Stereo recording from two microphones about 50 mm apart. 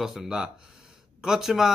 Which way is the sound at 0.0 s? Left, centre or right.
Centre.